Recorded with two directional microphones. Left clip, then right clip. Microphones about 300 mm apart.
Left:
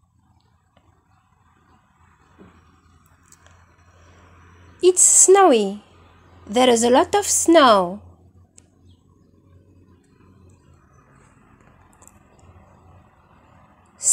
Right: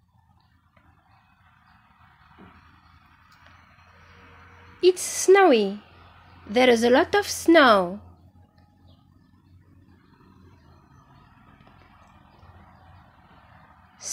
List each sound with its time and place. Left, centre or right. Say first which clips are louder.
4.7 s a woman's voice: left 6 dB; centre